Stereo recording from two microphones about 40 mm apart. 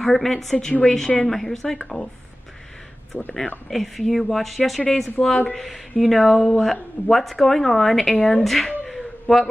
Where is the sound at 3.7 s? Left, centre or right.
Centre.